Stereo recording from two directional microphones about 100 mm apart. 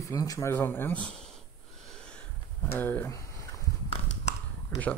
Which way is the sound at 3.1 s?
35° left (ahead or behind).